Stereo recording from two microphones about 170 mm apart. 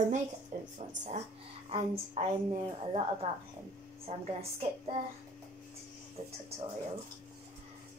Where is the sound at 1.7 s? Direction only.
35° right (ahead or behind).